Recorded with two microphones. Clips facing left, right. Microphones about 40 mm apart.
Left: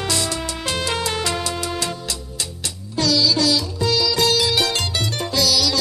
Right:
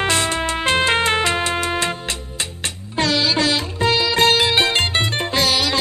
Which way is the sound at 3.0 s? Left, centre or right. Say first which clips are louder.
Even; right.